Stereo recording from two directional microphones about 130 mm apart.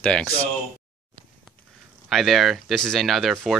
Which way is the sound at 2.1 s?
Centre (ahead or behind).